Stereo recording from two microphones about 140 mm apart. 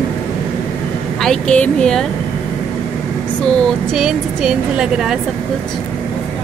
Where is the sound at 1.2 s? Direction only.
5° left (ahead or behind).